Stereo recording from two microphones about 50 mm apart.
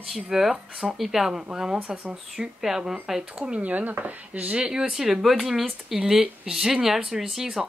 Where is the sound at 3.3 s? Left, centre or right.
Right.